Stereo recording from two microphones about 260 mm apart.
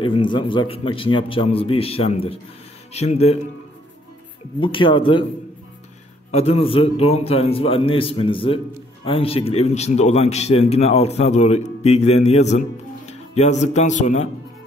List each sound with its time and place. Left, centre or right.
0.0 s speech: centre
4.6 s speech: centre
6.3 s speech: left